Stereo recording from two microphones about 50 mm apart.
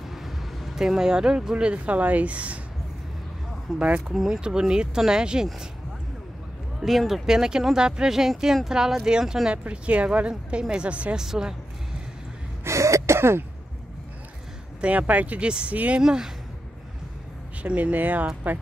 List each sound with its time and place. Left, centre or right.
0.0 s speech: centre; by 2.6 s right
3.7 s speech: centre
4.4 s speech: centre
6.8 s speech: centre
7.2 s speech: centre
9.5 s a woman's voice: right
11.1 s speech: centre
12.6 s throat clearing: right
14.8 s a woman's voice: right
16.0 s speech: centre
17.6 s speech: right